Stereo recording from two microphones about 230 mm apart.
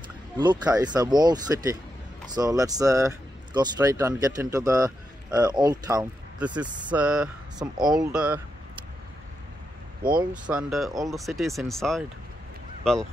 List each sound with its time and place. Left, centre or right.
0.4 s speech: centre
7.5 s speech: centre
8.1 s speech: centre
10.0 s speech: right
10.5 s speech: centre